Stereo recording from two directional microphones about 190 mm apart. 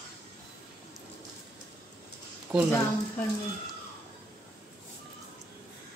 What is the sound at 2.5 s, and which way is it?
Speech, 15° right (ahead or behind).